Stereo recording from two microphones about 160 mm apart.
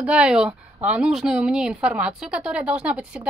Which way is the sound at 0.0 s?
5° right (ahead or behind).